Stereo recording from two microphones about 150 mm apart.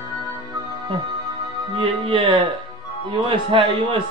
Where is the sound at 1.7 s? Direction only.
35° right (ahead or behind).